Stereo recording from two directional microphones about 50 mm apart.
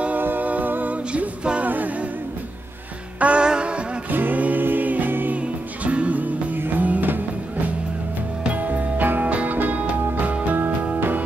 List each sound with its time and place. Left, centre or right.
0.2 s music: right
1.1 s music: right
1.7 s a capella: right
3.2 s music: right
4.1 s music: right
5.4 s music: right